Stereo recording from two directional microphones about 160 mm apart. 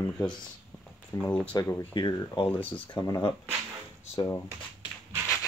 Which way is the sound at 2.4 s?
10° left (ahead or behind).